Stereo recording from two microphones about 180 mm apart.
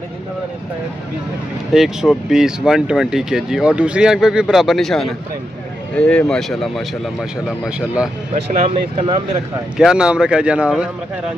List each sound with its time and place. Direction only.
1.7 s speech: centre (ahead or behind)
8.5 s speech: 30° right (ahead or behind)
9.8 s speech: 5° right (ahead or behind)